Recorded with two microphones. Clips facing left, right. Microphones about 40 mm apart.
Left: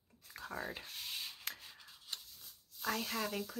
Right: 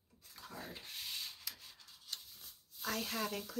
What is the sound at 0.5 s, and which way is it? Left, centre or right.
Speech, left.